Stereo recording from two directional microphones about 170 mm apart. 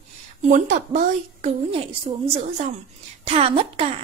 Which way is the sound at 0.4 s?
45° right (ahead or behind).